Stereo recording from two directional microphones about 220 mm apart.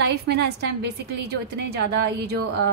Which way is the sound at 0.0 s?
50° right (ahead or behind).